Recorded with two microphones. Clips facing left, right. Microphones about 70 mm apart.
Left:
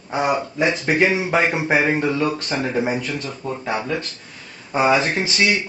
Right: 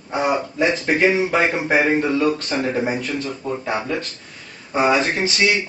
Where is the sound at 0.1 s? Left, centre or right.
Centre.